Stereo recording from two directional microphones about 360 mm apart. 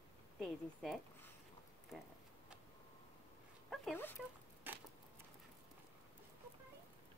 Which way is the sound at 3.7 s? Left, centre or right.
Centre.